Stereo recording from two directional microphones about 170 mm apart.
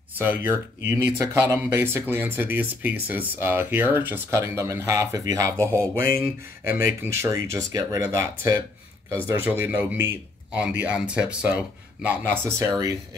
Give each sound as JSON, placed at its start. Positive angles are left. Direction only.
{"t": 0.2, "sound": "speech", "side_deg": -10}